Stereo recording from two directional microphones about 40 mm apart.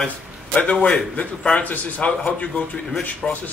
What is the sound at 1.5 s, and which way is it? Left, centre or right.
Speech, left.